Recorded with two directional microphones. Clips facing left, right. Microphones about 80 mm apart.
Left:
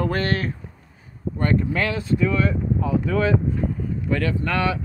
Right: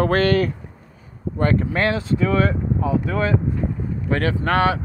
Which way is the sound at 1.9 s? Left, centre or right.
Right.